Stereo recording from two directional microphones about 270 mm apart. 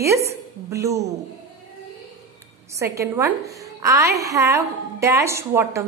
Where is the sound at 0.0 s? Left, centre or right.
Centre.